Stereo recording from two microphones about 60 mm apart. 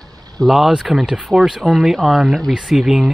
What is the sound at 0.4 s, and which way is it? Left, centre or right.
Speech, centre.